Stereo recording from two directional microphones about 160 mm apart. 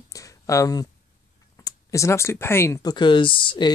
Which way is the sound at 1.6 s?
20° left (ahead or behind).